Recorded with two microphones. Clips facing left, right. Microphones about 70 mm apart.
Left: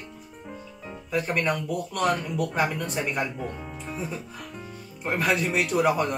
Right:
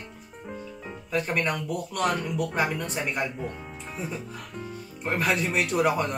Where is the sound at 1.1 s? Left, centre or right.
Centre.